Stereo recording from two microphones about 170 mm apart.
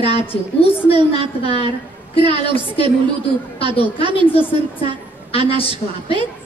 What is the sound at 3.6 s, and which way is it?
Speech, 30° right (ahead or behind).